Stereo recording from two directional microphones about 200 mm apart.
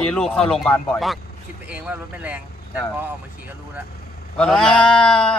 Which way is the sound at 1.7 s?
5° right (ahead or behind).